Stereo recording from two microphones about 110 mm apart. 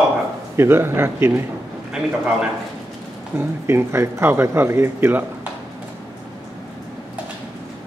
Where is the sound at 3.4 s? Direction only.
25° right (ahead or behind).